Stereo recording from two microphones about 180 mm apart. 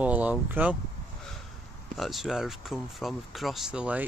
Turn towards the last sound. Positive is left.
turn(degrees=-5)  # may be behind; listen again after turning